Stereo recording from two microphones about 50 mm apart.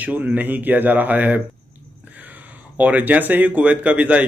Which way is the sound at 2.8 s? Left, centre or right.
Right.